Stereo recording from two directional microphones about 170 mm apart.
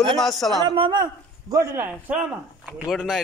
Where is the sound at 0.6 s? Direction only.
30° right (ahead or behind); by 3.2 s centre (ahead or behind).